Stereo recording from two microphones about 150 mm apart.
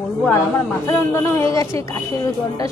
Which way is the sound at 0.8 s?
20° left (ahead or behind).